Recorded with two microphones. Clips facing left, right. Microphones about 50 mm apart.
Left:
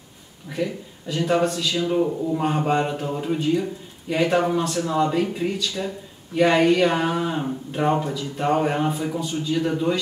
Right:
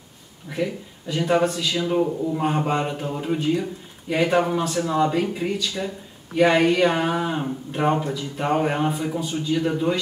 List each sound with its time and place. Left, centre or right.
0.5 s a man's voice: centre